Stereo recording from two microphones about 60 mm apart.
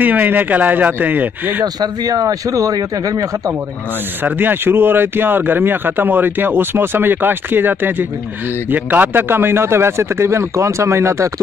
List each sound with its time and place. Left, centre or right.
0.0 s speech: right
1.6 s speech: right
4.2 s a man's voice: right